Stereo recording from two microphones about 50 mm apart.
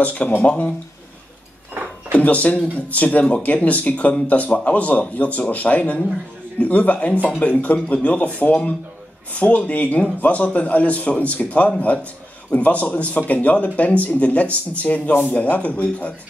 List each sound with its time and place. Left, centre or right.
0.0 s speech: left
2.1 s a man's voice: left